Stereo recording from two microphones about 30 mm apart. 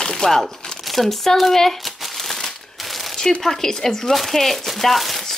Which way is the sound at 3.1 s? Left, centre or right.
Centre.